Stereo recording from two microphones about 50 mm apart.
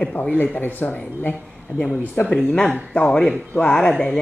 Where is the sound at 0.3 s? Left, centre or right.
Left.